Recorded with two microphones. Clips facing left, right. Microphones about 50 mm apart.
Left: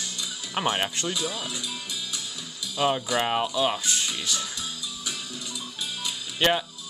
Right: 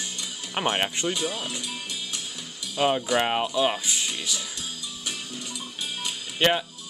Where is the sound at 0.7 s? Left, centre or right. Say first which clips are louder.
Right 2 dB; centre.